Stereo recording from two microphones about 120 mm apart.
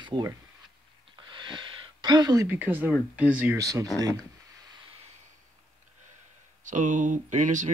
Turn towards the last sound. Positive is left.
turn(degrees=-85)